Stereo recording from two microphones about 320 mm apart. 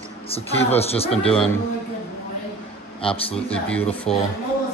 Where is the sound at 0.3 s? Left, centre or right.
Centre.